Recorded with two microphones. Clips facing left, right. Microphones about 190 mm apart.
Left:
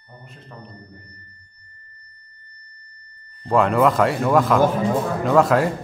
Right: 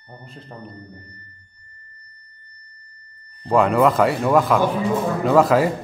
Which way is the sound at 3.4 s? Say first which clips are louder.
Right 1 dB; centre (ahead or behind).